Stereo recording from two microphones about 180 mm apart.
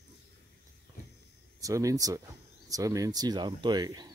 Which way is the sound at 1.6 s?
20° right (ahead or behind).